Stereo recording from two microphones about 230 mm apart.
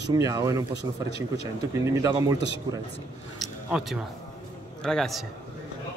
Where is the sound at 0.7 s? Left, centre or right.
Right.